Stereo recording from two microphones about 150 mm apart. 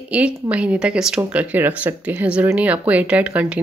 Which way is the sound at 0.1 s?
10° right (ahead or behind).